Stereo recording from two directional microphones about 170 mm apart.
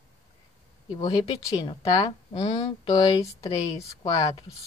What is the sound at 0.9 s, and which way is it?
Speech, 30° left (ahead or behind).